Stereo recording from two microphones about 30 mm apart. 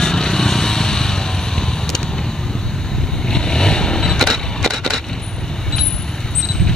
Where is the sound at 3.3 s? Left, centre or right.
Left.